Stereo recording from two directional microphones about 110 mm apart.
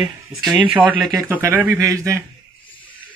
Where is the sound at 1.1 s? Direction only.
30° right (ahead or behind).